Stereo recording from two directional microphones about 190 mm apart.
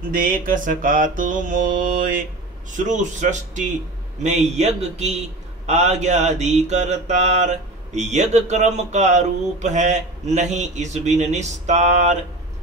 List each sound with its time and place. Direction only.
0.1 s music: 45° right (ahead or behind)
2.7 s mantra: 40° right (ahead or behind)